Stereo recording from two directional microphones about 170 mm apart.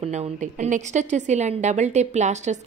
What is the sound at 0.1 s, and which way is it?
A woman's voice, 45° right (ahead or behind).